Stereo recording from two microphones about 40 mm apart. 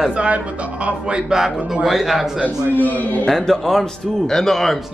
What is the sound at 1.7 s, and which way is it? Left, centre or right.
Speech, centre.